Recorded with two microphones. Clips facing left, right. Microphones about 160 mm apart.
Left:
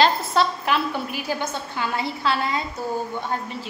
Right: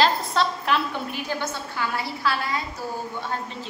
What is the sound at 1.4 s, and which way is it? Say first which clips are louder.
A woman's voice: left 1 dB; 20° left (ahead or behind).